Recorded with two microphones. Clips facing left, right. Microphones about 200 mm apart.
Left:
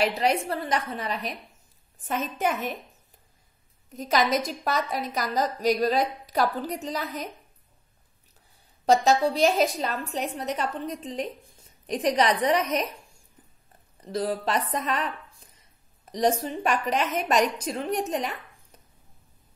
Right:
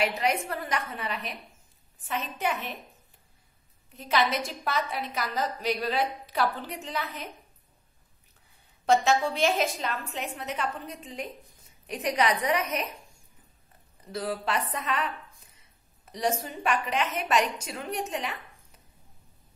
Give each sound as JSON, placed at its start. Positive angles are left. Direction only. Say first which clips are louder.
{"t": 0.0, "sound": "a woman's voice", "louder": "left 3 dB", "side_deg": 35}
{"t": 3.9, "sound": "a woman's voice", "louder": "left 3 dB", "side_deg": 40}
{"t": 8.8, "sound": "a woman's voice", "louder": "left 3 dB", "side_deg": 35}
{"t": 14.1, "sound": "a woman's voice", "louder": "left 4 dB", "side_deg": 35}
{"t": 16.1, "sound": "a woman's voice", "louder": "left 5 dB", "side_deg": 35}